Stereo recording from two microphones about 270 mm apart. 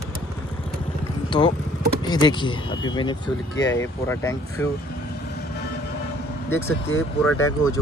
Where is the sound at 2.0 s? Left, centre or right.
Centre.